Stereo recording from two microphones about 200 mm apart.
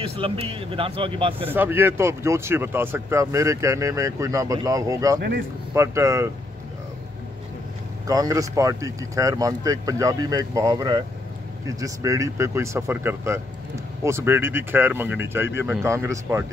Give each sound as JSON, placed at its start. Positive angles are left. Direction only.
{"t": 0.0, "sound": "a man's voice", "side_deg": -30}
{"t": 1.5, "sound": "speech", "side_deg": -10}
{"t": 8.1, "sound": "speech", "side_deg": -15}